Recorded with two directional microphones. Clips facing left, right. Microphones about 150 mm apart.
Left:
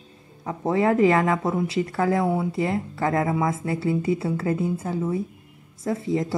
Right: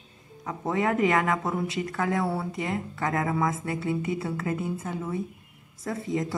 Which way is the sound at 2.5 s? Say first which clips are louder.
Left 6 dB; 30° left (ahead or behind).